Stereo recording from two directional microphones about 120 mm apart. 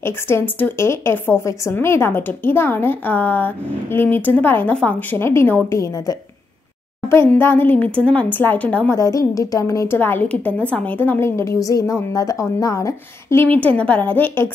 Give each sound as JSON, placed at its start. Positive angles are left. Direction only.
{"t": 0.0, "sound": "a woman's voice", "side_deg": 20}
{"t": 8.9, "sound": "a woman's voice", "side_deg": 25}